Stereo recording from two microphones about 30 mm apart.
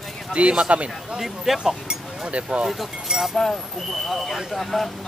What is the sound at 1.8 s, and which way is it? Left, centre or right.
Speech, right.